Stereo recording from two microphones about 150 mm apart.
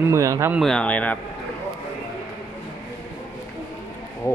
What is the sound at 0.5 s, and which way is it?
Speech, 5° left (ahead or behind).